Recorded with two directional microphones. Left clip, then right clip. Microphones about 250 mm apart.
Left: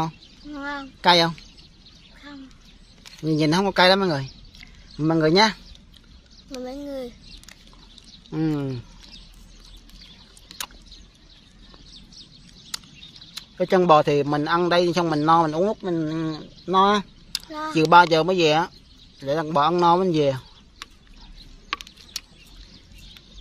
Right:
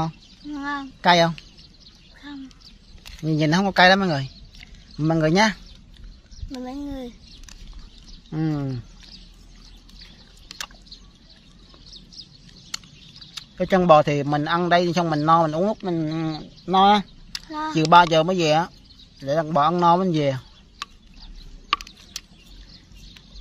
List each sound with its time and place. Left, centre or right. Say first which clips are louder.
0.0 s speech: left 1 dB; centre
3.1 s speech: left 1 dB; centre
6.6 s speech: left 1 dB; centre
8.3 s speech: left 2 dB; centre
13.3 s speech: even; centre
22.2 s a sound: left 2 dB; centre